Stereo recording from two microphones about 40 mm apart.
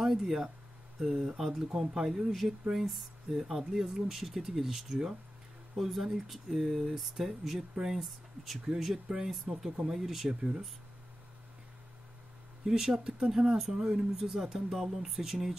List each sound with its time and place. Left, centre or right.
0.2 s speech: centre
12.6 s speech: centre